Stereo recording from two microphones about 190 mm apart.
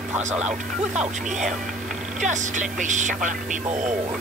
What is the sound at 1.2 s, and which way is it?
Speech, 40° right (ahead or behind).